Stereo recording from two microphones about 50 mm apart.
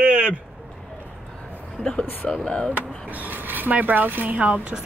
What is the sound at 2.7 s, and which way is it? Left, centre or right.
Speech, right.